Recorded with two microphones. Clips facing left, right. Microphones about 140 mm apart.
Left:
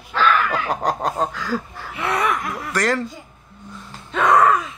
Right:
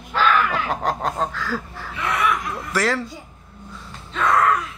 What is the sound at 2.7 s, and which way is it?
Speech, 5° right (ahead or behind).